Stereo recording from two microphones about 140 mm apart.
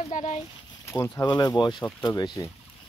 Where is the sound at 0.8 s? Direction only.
20° left (ahead or behind).